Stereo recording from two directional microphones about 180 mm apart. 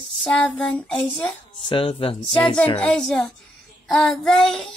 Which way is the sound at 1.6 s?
30° left (ahead or behind).